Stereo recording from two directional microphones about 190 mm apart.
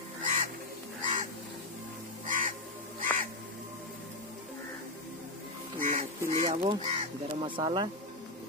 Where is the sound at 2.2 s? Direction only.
45° right (ahead or behind).